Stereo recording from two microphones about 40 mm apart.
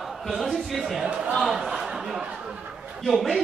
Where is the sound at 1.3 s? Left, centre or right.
Centre.